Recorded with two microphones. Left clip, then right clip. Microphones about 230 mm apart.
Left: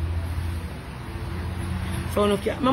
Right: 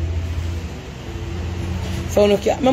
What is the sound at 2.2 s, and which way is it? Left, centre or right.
Speech, centre.